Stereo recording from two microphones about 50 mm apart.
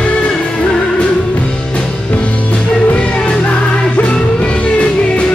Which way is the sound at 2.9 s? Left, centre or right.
Left.